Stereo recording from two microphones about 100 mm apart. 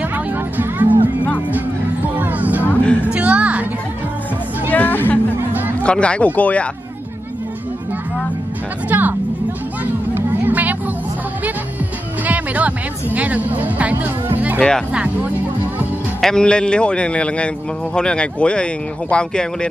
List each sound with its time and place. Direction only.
0.0 s music: 20° right (ahead or behind)
2.1 s music: 15° right (ahead or behind)
2.6 s music: 15° left (ahead or behind)
3.1 s a woman's voice: 10° right (ahead or behind)
4.6 s chatter: 20° left (ahead or behind)
5.5 s chatter: 20° right (ahead or behind)
5.9 s speech: 10° left (ahead or behind)
8.8 s speech: 20° right (ahead or behind)
10.1 s music: 20° right (ahead or behind)
12.3 s speech: 15° right (ahead or behind)
16.2 s speech: 5° left (ahead or behind)